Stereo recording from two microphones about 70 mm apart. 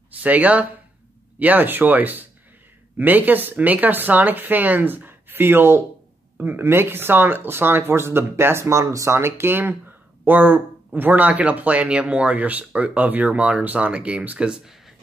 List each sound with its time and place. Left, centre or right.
0.2 s speech: right